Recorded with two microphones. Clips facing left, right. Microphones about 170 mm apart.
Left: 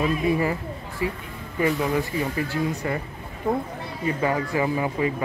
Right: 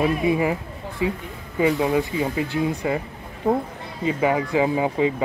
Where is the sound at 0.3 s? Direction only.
15° right (ahead or behind).